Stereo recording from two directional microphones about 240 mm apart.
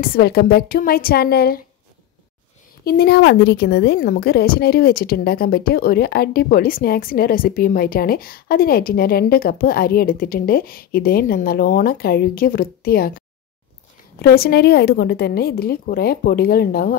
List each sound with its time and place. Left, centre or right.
0.0 s a woman's voice: left
2.8 s a woman's voice: left
14.2 s a woman's voice: left